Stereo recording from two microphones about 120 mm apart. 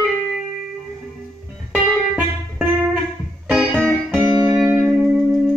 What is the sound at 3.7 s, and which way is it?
Music, 5° left (ahead or behind).